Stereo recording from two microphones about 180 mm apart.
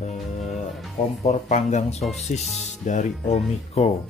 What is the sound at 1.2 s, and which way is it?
Speech, 40° left (ahead or behind).